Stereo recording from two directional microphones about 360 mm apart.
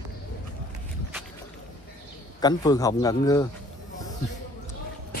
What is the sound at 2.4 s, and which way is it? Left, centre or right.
Speech, centre.